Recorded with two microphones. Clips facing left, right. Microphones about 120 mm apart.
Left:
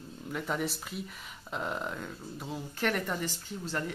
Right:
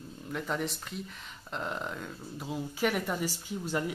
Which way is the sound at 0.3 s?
Centre (ahead or behind).